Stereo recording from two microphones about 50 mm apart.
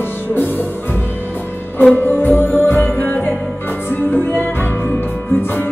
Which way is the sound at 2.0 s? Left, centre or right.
Left.